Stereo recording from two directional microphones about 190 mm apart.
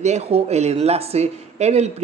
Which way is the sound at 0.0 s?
35° right (ahead or behind).